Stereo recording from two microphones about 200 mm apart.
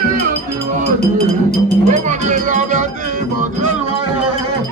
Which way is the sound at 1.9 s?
40° right (ahead or behind).